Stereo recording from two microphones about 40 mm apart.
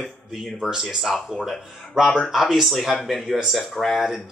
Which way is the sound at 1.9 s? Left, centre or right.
Centre.